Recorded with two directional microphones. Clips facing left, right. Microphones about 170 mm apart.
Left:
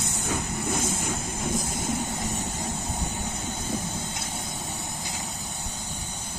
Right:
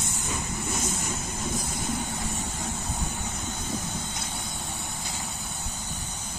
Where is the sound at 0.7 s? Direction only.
55° left (ahead or behind).